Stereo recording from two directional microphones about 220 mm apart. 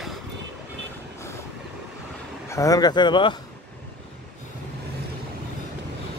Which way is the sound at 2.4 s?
15° left (ahead or behind).